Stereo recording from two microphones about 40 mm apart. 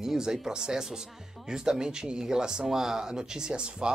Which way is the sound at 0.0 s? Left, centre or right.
Centre.